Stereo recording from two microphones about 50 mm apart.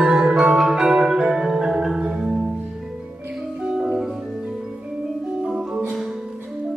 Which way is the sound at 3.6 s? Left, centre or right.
Centre.